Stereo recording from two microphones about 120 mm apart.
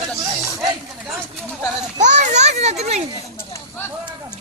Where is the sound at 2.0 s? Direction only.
85° right; by 3.0 s 65° right (ahead or behind).